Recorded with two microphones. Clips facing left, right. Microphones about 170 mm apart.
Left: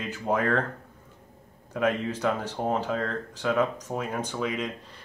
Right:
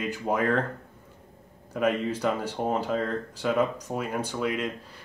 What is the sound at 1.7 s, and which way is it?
Speech, 10° right (ahead or behind).